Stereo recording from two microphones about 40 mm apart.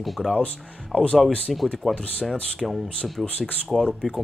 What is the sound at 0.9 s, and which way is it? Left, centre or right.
Speech, left.